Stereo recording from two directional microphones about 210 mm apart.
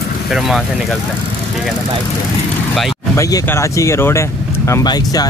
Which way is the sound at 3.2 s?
15° left (ahead or behind).